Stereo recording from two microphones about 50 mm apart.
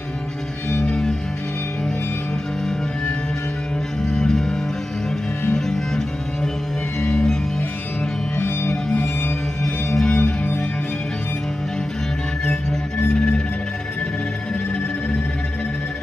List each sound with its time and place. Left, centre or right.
0.8 s music: centre
4.2 s music: centre
5.7 s music: centre
8.4 s music: left
9.6 s music: centre
10.0 s music: centre